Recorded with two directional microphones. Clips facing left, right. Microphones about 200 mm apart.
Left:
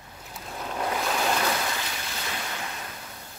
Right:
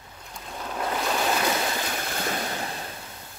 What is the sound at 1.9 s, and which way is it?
Waves, 50° right (ahead or behind).